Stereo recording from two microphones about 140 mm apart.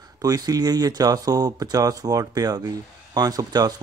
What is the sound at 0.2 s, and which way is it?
Speech, 25° right (ahead or behind).